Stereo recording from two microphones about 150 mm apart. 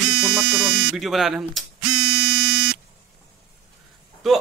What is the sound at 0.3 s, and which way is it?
Speech, 5° right (ahead or behind).